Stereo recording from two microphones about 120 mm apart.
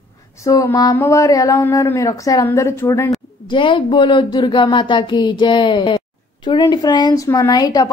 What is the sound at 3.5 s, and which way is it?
Speech, 45° left (ahead or behind).